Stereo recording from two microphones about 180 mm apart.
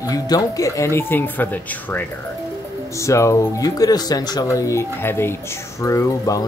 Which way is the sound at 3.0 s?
15° left (ahead or behind).